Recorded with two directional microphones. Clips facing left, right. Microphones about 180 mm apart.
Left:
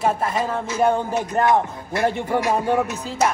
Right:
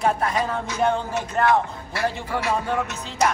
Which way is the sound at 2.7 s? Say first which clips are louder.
Left 5 dB; 5° left (ahead or behind).